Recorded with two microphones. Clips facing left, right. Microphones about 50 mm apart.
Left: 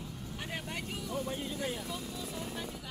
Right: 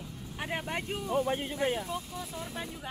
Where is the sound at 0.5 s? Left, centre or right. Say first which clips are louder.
Right 6 dB; right.